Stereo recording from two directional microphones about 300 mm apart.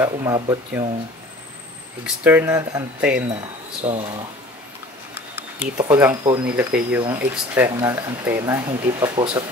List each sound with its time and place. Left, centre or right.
0.0 s speech: centre
2.0 s speech: centre
3.8 s speech: right
5.3 s speech: centre